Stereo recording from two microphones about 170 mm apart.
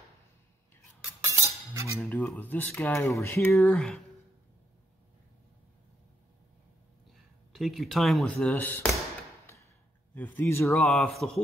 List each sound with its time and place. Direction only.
1.3 s a sound: 20° right (ahead or behind)
2.0 s speech: 10° left (ahead or behind)
7.5 s speech: centre (ahead or behind)
10.1 s speech: 10° left (ahead or behind)
10.8 s speech: centre (ahead or behind)